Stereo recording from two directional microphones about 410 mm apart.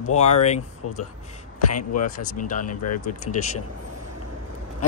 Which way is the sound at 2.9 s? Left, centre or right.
Left.